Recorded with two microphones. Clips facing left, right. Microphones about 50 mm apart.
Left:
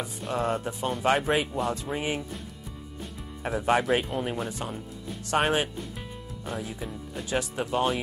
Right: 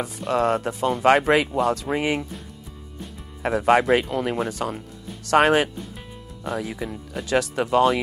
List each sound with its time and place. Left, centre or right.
0.3 s speech: right
3.4 s speech: right
3.9 s speech: right
7.2 s speech: right